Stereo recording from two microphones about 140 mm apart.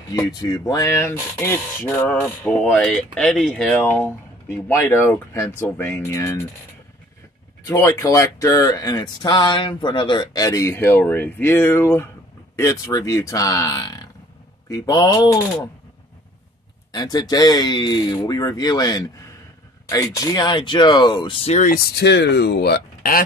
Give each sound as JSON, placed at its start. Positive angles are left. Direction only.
{"t": 0.1, "sound": "speech", "side_deg": 30}
{"t": 3.7, "sound": "speech", "side_deg": 15}
{"t": 7.6, "sound": "speech", "side_deg": 20}
{"t": 16.9, "sound": "speech", "side_deg": 30}
{"t": 21.5, "sound": "speech", "side_deg": 85}